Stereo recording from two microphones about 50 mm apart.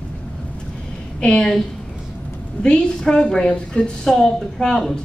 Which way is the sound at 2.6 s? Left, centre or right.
Centre.